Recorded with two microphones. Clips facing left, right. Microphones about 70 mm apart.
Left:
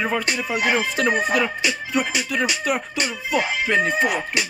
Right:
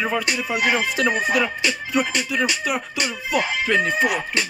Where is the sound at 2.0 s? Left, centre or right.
Centre.